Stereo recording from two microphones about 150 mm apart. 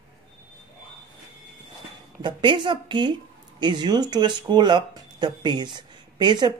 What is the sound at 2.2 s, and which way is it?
Speech, 30° right (ahead or behind).